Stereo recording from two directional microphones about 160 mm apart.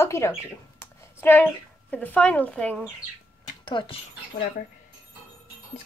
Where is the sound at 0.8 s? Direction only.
15° left (ahead or behind).